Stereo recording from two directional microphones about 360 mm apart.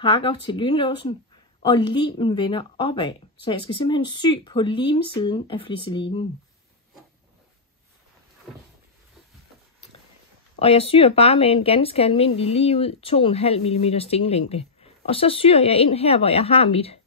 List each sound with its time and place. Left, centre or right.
0.0 s speech: centre
8.5 s a sound: centre
10.6 s speech: centre